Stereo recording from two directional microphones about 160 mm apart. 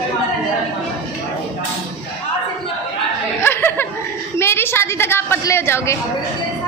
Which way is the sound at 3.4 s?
15° left (ahead or behind).